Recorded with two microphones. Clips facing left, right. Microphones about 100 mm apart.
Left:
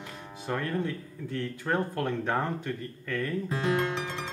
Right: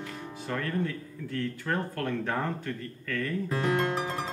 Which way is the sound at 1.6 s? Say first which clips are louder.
Left 5 dB; 20° left (ahead or behind).